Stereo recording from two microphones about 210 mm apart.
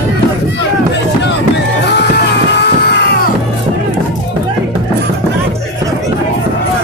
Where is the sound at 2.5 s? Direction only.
55° left (ahead or behind).